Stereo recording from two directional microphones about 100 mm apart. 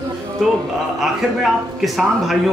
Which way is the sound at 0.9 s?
Centre (ahead or behind).